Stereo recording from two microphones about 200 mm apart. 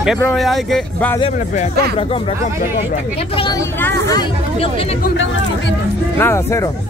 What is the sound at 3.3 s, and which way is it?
Speech, 25° left (ahead or behind).